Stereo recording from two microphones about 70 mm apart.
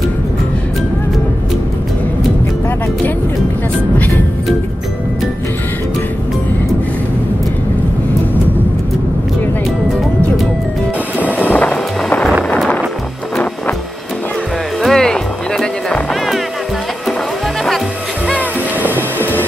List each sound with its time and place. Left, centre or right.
11.3 s music: left
14.8 s music: centre
18.8 s a sound: right